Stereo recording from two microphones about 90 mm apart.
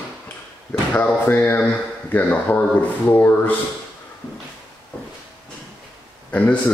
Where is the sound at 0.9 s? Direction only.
15° left (ahead or behind).